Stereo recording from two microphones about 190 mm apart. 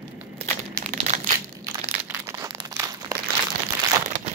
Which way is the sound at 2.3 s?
15° right (ahead or behind).